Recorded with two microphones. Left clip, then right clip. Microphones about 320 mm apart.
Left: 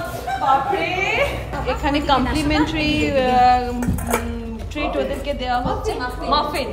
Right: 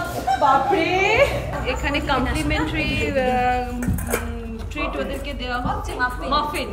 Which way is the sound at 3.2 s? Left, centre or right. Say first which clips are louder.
Left 7 dB; left.